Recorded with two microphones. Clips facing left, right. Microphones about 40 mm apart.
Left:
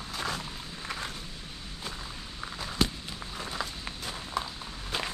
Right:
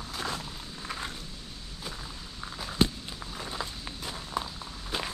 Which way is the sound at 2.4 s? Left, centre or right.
Centre.